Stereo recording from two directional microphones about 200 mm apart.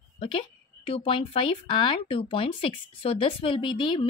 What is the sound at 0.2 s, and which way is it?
A woman's voice, 25° left (ahead or behind).